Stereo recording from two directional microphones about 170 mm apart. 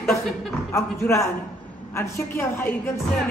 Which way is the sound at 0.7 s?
15° left (ahead or behind).